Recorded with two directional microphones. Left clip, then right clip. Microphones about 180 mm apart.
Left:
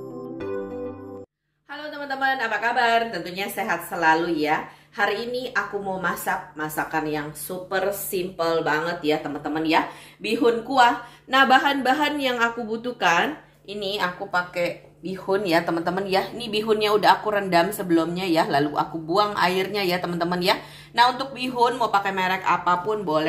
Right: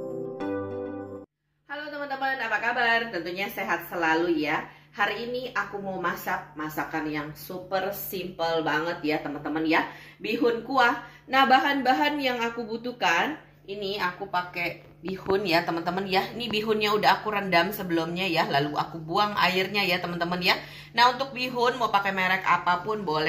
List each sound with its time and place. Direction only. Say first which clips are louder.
1.7 s a sound: left 2 dB; 65° left (ahead or behind)
3.1 s a woman's voice: left 2 dB; 65° left (ahead or behind)
13.9 s speech: left 4 dB; 45° left (ahead or behind)